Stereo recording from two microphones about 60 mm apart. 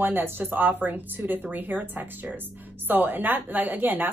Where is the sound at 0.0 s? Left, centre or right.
Right.